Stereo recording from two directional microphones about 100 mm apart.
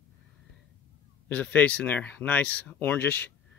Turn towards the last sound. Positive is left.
turn(degrees=15)  # may be behind; listen again after turning